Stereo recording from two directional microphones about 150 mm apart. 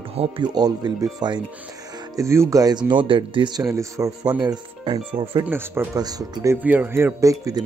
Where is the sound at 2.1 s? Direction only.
20° right (ahead or behind); by 5.4 s 35° right (ahead or behind).